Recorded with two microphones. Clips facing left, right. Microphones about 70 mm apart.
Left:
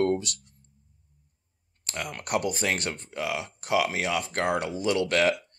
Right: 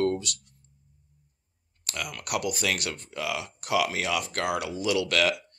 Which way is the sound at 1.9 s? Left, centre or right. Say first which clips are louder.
Left 2 dB; left.